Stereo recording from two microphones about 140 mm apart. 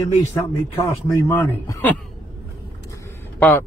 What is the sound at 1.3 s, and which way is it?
Speech, 20° left (ahead or behind).